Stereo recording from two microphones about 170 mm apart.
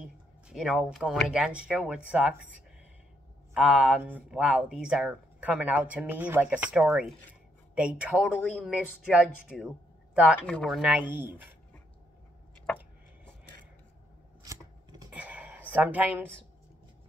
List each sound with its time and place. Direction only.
0.0 s speech: 5° right (ahead or behind)
3.5 s speech: 5° right (ahead or behind)
10.4 s speech: 5° left (ahead or behind); by 11.3 s 10° right (ahead or behind)
12.7 s a sound: 5° left (ahead or behind)
14.4 s scissors: 20° right (ahead or behind)
15.0 s a sound: 10° right (ahead or behind)